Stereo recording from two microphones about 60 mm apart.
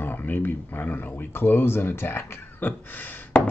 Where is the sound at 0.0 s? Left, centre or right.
Left.